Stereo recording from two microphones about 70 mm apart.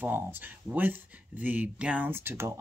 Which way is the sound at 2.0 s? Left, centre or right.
Right.